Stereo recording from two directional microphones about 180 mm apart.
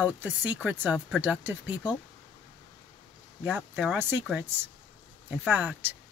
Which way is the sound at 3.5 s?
10° right (ahead or behind).